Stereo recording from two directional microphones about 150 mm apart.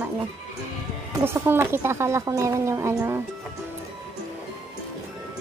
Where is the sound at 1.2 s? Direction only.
15° right (ahead or behind).